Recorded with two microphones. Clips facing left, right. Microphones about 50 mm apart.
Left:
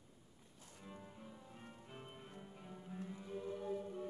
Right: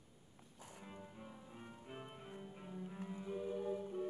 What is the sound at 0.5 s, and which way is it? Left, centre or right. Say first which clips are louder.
Music: right 3 dB; right.